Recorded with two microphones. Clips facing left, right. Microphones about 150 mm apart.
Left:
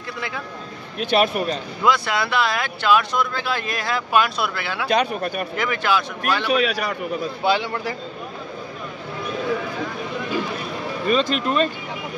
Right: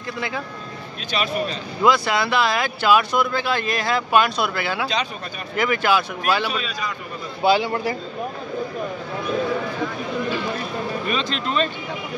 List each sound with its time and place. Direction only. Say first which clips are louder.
1.1 s speech: left 5 dB; 55° left (ahead or behind)
1.8 s speech: right 3 dB; centre (ahead or behind)
4.8 s speech: left 5 dB; 60° left (ahead or behind)
5.6 s speech: right 3 dB; 5° right (ahead or behind)
6.5 s a man's voice: left 8 dB; 70° left (ahead or behind)
7.4 s a man's voice: right 4 dB; 10° right (ahead or behind)
11.1 s speech: left 4 dB; 50° left (ahead or behind)